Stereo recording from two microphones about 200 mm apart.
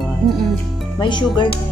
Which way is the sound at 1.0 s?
25° left (ahead or behind).